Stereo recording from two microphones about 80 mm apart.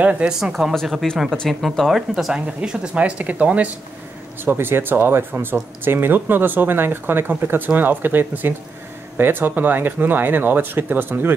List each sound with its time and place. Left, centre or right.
0.0 s speech: centre
0.3 s speech: centre; by 11.3 s right